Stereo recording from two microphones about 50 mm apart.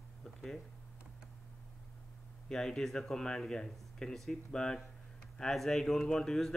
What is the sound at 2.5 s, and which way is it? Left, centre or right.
Speech, centre.